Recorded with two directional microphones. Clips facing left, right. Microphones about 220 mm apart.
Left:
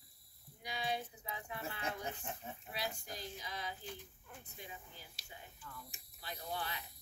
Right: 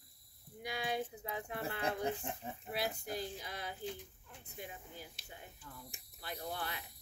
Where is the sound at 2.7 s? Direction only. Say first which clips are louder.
Right 6 dB; 60° right (ahead or behind).